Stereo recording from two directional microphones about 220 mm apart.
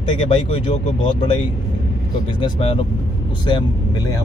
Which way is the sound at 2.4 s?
25° left (ahead or behind).